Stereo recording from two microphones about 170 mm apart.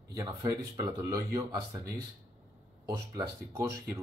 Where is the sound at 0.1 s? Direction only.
20° right (ahead or behind).